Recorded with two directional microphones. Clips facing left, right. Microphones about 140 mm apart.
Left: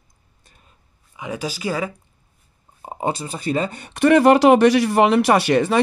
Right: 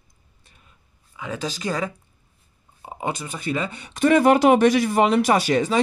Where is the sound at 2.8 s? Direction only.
35° left (ahead or behind).